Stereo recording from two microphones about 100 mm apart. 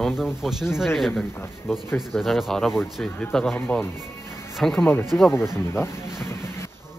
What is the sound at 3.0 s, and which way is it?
Speech, 10° left (ahead or behind).